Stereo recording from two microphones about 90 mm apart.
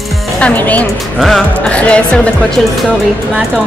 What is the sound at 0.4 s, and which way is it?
A woman's voice, 15° left (ahead or behind).